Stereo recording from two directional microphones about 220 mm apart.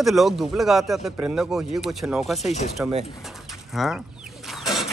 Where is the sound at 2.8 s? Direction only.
10° right (ahead or behind).